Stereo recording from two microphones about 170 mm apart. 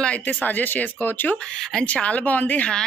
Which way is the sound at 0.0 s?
10° left (ahead or behind).